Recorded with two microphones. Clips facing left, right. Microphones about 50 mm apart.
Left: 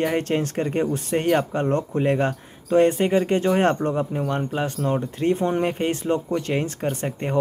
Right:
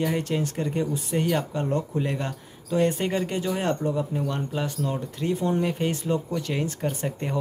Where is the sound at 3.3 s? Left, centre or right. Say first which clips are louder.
Left 7 dB; left.